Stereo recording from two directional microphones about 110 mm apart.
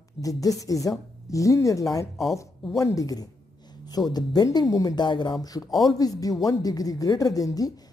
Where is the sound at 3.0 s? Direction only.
35° left (ahead or behind).